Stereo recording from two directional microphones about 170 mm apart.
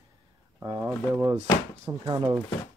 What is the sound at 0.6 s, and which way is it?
Speech, 20° right (ahead or behind).